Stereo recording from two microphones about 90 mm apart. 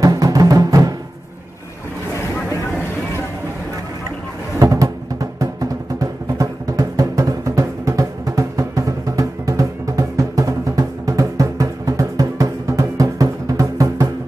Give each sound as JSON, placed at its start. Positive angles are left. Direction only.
{"t": 0.0, "sound": "music", "side_deg": -45}
{"t": 4.6, "sound": "music", "side_deg": -40}